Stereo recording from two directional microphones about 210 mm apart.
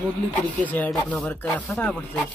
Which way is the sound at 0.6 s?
10° left (ahead or behind).